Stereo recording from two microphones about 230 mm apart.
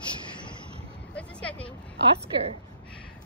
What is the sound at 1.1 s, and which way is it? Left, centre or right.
Vehicle, centre.